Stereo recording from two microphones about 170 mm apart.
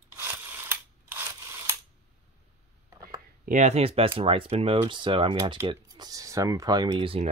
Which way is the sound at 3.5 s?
45° right (ahead or behind).